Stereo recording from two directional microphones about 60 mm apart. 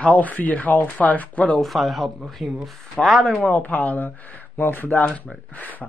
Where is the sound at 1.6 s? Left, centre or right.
Centre.